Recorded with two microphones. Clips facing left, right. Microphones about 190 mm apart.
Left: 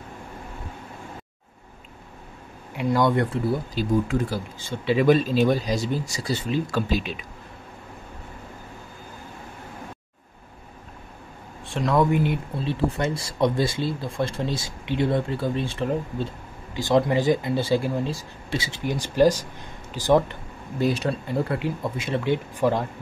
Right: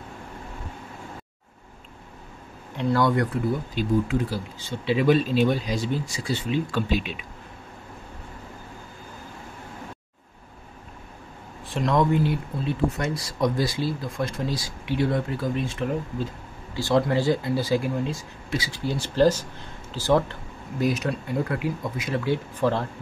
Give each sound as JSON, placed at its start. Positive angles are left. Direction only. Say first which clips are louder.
{"t": 2.7, "sound": "speech", "louder": "left 1 dB", "side_deg": 10}
{"t": 3.5, "sound": "speech", "louder": "left 1 dB", "side_deg": 40}
{"t": 11.6, "sound": "speech", "louder": "left 1 dB", "side_deg": 0}
{"t": 12.1, "sound": "speech", "louder": "even", "side_deg": 20}
{"t": 16.7, "sound": "speech", "louder": "left 1 dB", "side_deg": 20}
{"t": 20.8, "sound": "speech", "louder": "left 1 dB", "side_deg": 30}